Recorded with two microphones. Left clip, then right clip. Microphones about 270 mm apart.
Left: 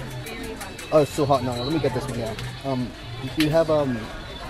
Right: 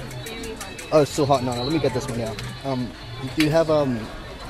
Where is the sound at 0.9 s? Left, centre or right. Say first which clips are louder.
Right 1 dB; right.